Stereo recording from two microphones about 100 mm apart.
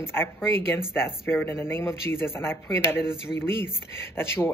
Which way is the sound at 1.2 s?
25° left (ahead or behind).